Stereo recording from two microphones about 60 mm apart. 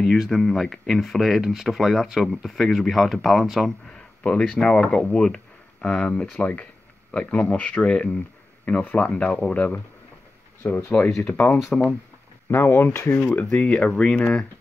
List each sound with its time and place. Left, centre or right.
0.0 s speech: centre
4.2 s speech: centre
11.1 s speech: centre
12.4 s speech: left; by 14.4 s centre